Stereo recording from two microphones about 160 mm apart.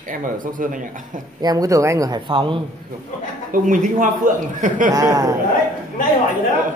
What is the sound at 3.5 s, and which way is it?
Speech, 55° right (ahead or behind).